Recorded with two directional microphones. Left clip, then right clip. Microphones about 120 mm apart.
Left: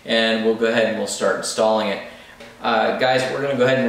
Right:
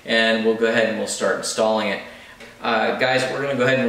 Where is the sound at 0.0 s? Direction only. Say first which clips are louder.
Even; centre (ahead or behind).